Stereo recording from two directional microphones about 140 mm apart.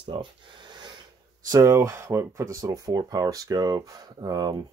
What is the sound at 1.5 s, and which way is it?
Speech, 20° right (ahead or behind).